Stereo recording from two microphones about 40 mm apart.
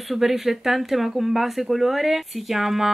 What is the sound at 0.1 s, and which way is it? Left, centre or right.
A woman's voice, centre.